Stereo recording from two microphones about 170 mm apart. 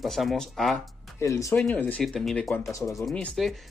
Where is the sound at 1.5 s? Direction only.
5° left (ahead or behind).